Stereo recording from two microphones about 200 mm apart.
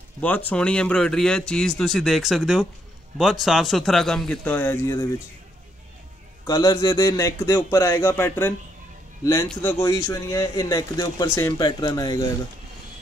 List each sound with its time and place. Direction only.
0.2 s speech: 10° left (ahead or behind)
6.4 s a man's voice: 20° left (ahead or behind)